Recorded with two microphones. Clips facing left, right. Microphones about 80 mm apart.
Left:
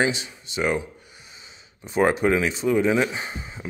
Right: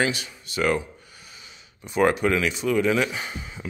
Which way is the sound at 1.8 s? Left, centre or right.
Left.